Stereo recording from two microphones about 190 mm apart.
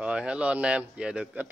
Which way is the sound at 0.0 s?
5° right (ahead or behind).